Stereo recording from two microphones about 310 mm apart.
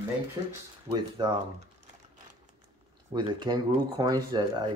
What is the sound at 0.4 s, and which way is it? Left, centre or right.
Speech, centre.